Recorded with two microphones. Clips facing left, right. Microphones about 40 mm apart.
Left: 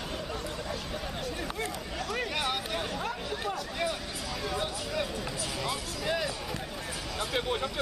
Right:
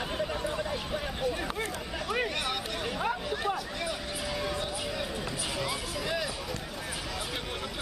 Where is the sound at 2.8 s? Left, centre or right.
Centre.